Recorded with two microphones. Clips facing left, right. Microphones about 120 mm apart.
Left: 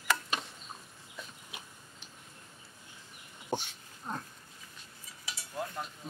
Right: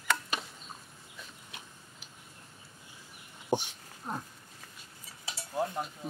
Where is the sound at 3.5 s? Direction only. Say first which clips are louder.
Right 5 dB; 15° right (ahead or behind).